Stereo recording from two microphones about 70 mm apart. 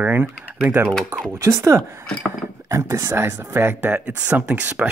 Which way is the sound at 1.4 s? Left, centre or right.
Right.